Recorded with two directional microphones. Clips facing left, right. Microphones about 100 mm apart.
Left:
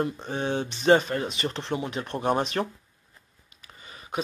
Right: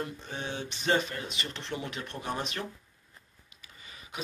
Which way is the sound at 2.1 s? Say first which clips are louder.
Left 12 dB; 55° left (ahead or behind).